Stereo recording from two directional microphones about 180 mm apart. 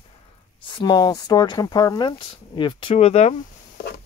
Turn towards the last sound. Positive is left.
turn(degrees=35)  # may be behind; listen again after turning